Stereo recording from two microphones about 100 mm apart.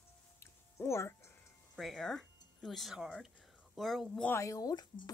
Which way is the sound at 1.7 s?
Centre (ahead or behind).